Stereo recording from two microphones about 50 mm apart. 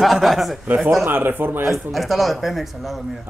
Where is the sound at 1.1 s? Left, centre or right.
Right.